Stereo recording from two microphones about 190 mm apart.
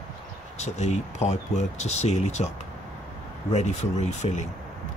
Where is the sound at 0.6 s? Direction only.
35° left (ahead or behind).